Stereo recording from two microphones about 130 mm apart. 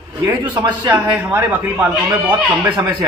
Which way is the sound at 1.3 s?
10° right (ahead or behind).